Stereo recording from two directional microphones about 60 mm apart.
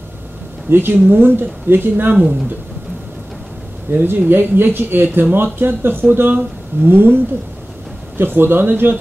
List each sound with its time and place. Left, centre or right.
0.7 s speech: right
3.9 s speech: right
8.2 s speech: right